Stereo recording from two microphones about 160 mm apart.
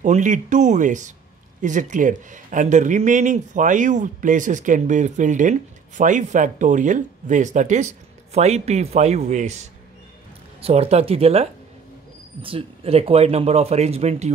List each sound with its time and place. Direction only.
0.0 s speech: 50° right (ahead or behind)